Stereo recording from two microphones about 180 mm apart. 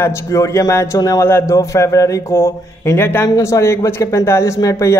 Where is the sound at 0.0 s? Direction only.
15° left (ahead or behind).